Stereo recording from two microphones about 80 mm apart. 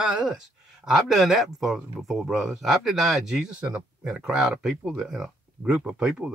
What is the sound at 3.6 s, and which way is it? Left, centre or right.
Speech, centre.